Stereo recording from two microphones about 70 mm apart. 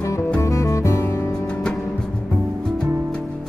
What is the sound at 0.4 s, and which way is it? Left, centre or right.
Music, left.